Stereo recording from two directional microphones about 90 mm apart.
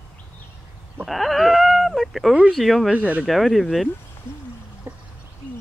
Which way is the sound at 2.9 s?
15° right (ahead or behind).